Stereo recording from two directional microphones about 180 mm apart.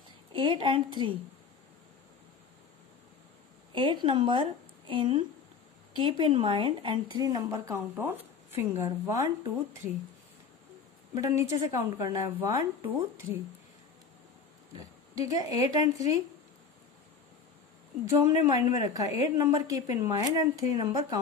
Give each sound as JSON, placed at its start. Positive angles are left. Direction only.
{"t": 0.3, "sound": "a woman's voice", "side_deg": -30}
{"t": 3.7, "sound": "a woman's voice", "side_deg": -25}
{"t": 11.1, "sound": "a woman's voice", "side_deg": -15}
{"t": 14.8, "sound": "speech", "side_deg": -20}
{"t": 18.0, "sound": "a woman's voice", "side_deg": -20}